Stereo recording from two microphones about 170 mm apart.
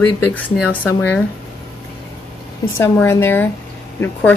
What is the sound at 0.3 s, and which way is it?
Speech, 10° left (ahead or behind).